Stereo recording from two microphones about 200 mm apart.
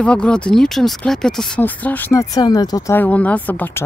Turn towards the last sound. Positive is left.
turn(degrees=10)  # may be behind; listen again after turning